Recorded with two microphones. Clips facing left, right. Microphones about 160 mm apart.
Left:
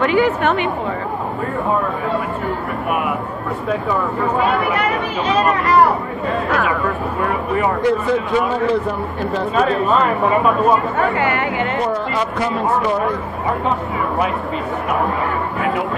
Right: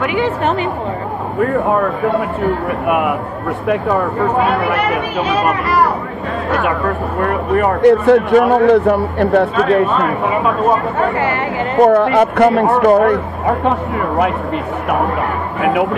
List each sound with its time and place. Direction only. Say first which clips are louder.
0.2 s a woman's voice: even; 35° right (ahead or behind)
7.2 s speech: right 5 dB; 55° right (ahead or behind)
11.0 s a woman's voice: right 2 dB; 30° right (ahead or behind)
11.8 s speech: right 10 dB; 55° right (ahead or behind)